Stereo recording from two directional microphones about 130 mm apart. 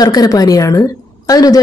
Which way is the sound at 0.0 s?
30° left (ahead or behind).